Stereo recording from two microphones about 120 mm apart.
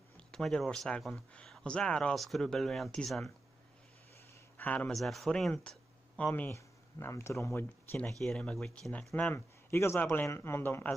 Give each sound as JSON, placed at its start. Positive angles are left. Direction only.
{"t": 0.3, "sound": "speech", "side_deg": 5}
{"t": 4.6, "sound": "speech", "side_deg": 10}
{"t": 8.2, "sound": "speech", "side_deg": 5}
{"t": 9.3, "sound": "speech", "side_deg": 20}